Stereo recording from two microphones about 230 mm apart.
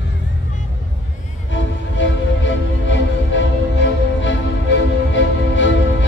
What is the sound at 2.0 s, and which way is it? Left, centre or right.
Music, left.